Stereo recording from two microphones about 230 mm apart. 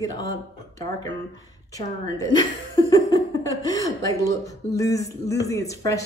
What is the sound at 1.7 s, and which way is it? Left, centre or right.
Speech, centre.